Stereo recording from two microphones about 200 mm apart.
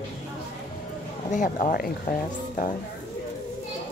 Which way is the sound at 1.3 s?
40° left (ahead or behind).